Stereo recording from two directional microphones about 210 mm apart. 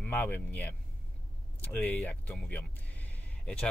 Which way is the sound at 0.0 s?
10° left (ahead or behind).